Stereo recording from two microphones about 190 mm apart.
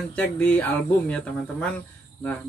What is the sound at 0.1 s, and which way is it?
Speech, 5° left (ahead or behind).